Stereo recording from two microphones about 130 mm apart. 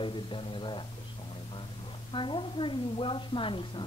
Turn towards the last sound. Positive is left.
turn(degrees=40)  # may be behind; listen again after turning